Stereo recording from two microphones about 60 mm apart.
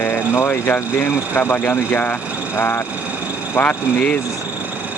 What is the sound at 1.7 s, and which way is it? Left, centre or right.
Speech, left.